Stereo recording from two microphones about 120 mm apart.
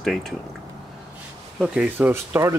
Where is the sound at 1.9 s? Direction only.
20° right (ahead or behind).